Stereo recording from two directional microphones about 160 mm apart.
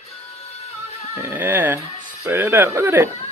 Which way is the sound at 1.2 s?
10° right (ahead or behind).